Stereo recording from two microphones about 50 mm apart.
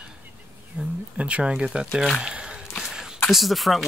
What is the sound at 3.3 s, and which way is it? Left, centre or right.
Speech, centre.